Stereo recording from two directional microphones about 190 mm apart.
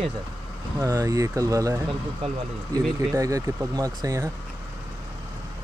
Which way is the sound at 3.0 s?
15° right (ahead or behind).